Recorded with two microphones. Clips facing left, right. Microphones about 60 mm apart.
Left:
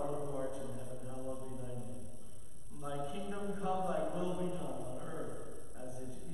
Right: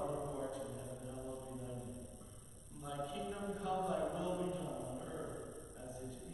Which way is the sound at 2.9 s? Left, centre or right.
Centre.